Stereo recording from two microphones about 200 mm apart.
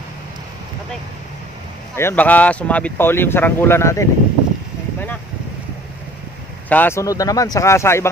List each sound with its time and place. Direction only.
2.0 s speech: 10° left (ahead or behind)
6.7 s speech: 10° left (ahead or behind)